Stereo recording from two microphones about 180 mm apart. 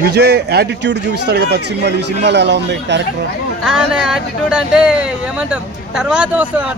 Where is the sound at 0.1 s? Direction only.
65° right (ahead or behind).